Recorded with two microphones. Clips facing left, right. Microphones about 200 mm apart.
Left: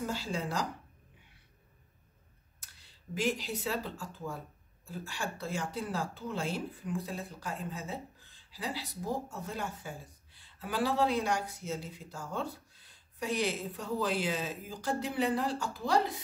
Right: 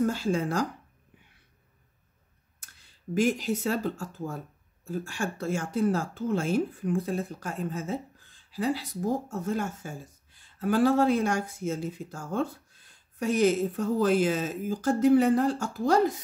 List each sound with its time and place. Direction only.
0.0 s speech: 50° right (ahead or behind)
3.2 s speech: 45° right (ahead or behind)